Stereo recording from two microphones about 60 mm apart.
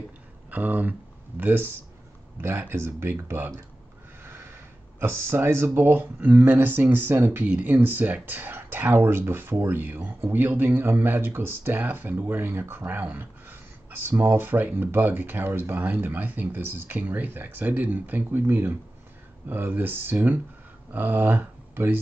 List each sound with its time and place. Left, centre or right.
0.5 s speech: right
2.7 s speech: right
4.2 s a sound: right
5.0 s speech: right
6.2 s speech: right